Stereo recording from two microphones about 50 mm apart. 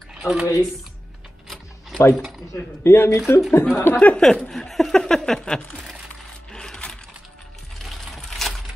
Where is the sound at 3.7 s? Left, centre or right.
Left.